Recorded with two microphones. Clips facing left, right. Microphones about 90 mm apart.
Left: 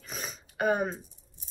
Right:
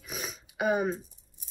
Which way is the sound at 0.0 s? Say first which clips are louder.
Right 1 dB; 5° right (ahead or behind).